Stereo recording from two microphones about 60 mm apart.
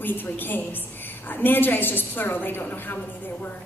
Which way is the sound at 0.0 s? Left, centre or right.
Left.